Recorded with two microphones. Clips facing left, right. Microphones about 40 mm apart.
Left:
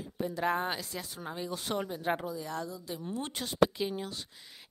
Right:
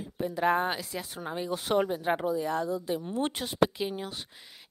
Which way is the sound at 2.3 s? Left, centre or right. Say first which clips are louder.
Right 8 dB; right.